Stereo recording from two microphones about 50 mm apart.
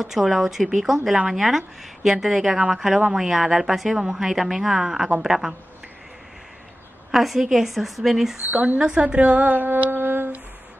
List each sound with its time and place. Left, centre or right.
0.0 s a woman's voice: centre
7.1 s a woman's voice: centre
8.5 s a woman's voice: right